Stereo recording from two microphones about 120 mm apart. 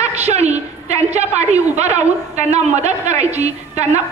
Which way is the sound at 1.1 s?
70° right (ahead or behind).